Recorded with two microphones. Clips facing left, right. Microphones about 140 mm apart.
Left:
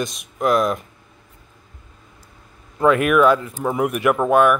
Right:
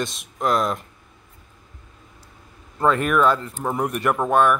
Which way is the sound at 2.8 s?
10° left (ahead or behind).